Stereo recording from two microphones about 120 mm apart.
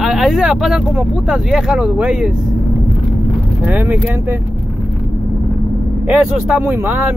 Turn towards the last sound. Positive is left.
turn(degrees=-15)  # may be behind; listen again after turning